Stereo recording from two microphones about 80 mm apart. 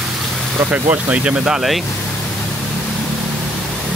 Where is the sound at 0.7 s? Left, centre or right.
Centre.